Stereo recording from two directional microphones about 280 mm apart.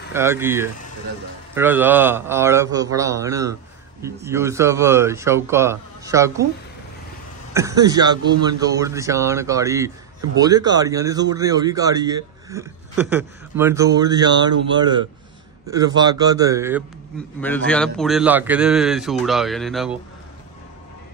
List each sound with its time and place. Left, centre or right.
0.1 s speech: centre
7.5 s speech: centre
17.6 s a man's voice: centre